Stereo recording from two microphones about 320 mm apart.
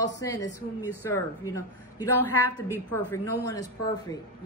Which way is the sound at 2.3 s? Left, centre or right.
Left.